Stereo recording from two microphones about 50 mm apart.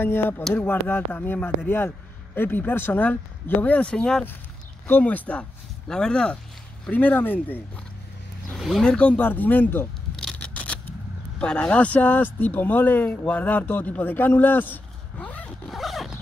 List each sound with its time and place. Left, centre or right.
0.0 s speech: left
0.4 s speech: centre
0.7 s speech: left
3.8 s speech: centre
5.0 s speech: left
5.9 s speech: centre
6.9 s speech: left
8.5 s speech: centre
8.8 s speech: centre
9.1 s speech: left
10.4 s scissors: left
11.3 s speech: left
15.1 s zipper: left
15.7 s zipper: centre